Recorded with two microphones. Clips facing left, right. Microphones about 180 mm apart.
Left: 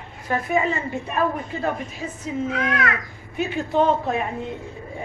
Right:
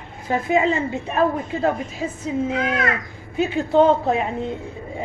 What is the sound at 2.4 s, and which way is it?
A man's voice, 25° right (ahead or behind).